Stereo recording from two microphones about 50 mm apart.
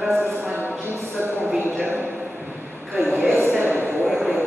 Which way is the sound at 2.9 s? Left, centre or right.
Right.